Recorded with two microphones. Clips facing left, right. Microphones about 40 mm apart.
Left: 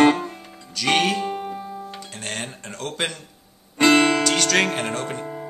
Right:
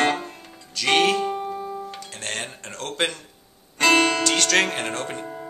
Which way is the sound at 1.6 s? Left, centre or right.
Centre.